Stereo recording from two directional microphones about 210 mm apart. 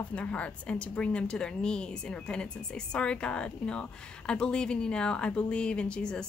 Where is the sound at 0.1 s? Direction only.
5° left (ahead or behind).